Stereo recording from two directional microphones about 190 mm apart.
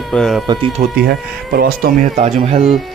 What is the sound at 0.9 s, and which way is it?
Speech, 55° right (ahead or behind).